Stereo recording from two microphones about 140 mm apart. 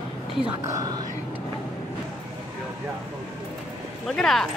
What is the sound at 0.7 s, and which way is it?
Speech, 25° right (ahead or behind).